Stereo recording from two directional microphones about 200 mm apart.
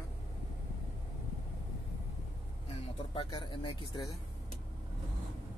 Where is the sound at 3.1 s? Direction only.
25° left (ahead or behind).